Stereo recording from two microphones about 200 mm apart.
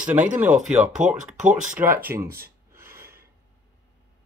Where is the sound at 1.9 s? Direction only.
15° right (ahead or behind).